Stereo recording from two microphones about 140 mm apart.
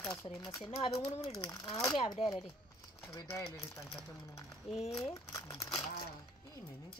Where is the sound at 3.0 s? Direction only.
20° left (ahead or behind).